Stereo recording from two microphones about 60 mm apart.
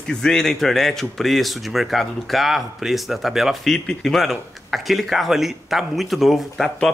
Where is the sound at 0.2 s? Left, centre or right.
Centre.